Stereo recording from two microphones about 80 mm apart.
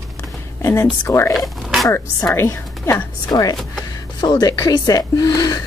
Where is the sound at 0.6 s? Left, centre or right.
Left.